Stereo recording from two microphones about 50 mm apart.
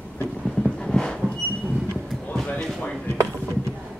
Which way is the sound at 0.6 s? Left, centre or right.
Centre.